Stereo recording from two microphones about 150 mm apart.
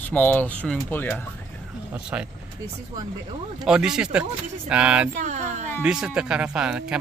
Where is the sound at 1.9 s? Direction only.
10° right (ahead or behind).